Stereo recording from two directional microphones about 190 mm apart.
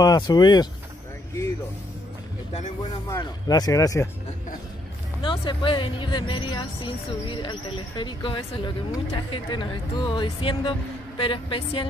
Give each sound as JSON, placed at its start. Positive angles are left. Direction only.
{"t": 0.0, "sound": "speech", "side_deg": 20}
{"t": 2.8, "sound": "speech", "side_deg": 20}
{"t": 5.2, "sound": "speech", "side_deg": 25}